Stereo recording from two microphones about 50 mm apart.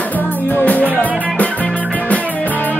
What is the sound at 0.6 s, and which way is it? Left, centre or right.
Music, left.